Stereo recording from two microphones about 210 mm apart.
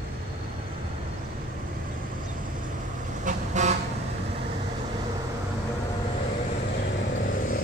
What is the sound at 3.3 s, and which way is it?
Vehicle, 35° right (ahead or behind).